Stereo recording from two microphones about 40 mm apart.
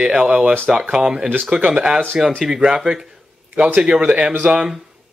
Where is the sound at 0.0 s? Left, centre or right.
Centre.